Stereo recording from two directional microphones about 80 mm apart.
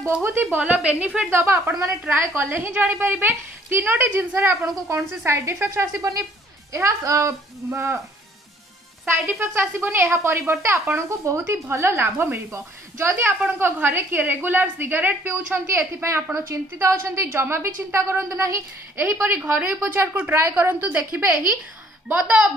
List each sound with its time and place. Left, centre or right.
0.2 s a woman's voice: right
1.3 s a woman's voice: right
9.0 s a woman's voice: right
13.5 s a woman's voice: right
19.5 s a woman's voice: centre
19.8 s a woman's voice: right